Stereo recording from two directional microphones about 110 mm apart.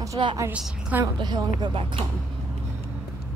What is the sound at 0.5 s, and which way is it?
Speech, 10° right (ahead or behind).